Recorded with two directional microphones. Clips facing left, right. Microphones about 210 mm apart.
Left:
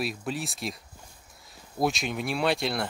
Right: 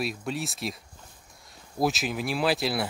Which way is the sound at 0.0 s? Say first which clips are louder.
Right 1 dB; centre (ahead or behind).